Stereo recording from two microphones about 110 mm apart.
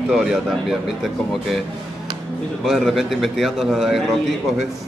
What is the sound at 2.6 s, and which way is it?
A man's voice, centre (ahead or behind).